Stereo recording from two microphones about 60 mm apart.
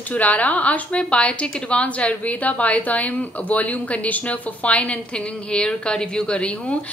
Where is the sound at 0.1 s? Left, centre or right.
Left.